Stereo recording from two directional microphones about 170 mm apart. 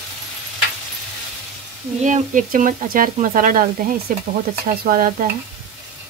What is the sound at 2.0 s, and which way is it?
Speech, 50° right (ahead or behind).